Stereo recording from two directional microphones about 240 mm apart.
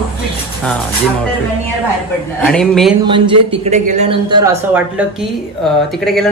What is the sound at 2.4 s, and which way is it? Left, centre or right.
Speech, centre.